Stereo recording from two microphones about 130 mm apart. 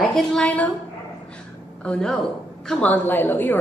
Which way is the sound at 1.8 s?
5° left (ahead or behind).